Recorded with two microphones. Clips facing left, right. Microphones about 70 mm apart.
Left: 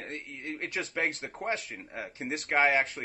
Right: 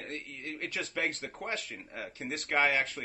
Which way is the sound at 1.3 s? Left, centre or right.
Centre.